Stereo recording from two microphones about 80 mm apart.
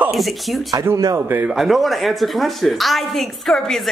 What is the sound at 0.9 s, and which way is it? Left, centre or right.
Speech, right.